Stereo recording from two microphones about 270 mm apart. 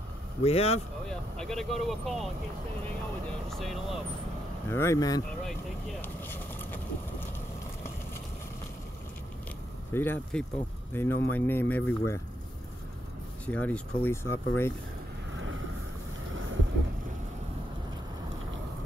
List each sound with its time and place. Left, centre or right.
0.4 s speech: left
1.0 s speech: centre
3.5 s speech: centre
9.9 s speech: centre
13.5 s speech: centre
15.3 s vehicle: right